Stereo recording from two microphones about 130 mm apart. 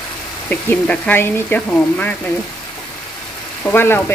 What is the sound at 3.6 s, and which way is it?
Speech, 15° left (ahead or behind).